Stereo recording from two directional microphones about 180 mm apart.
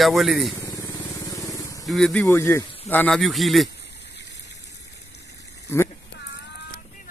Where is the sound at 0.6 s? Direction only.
20° left (ahead or behind).